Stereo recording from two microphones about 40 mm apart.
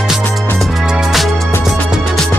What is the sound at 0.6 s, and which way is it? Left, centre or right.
Music, centre.